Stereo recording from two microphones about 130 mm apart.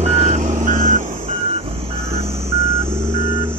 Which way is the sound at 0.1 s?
60° right (ahead or behind).